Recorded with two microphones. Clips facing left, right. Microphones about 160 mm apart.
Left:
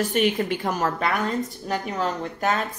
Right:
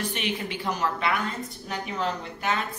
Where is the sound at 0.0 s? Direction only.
45° left (ahead or behind).